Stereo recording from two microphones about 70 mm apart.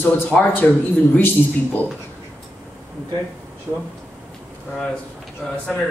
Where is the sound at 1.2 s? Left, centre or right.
Left.